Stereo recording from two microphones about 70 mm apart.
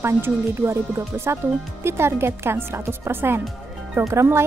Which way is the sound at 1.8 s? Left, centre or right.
Right.